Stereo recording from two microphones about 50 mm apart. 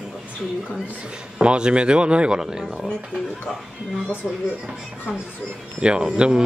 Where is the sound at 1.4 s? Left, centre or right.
Centre.